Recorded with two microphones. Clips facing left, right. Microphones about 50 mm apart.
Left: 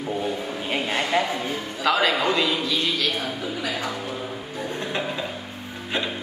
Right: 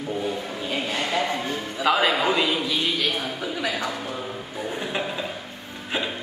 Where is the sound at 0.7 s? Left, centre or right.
Left.